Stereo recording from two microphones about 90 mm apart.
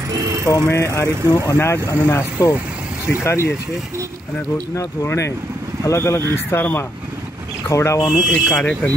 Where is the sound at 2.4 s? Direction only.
40° left (ahead or behind).